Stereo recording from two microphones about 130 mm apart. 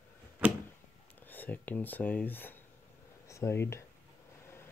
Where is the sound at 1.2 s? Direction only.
15° left (ahead or behind).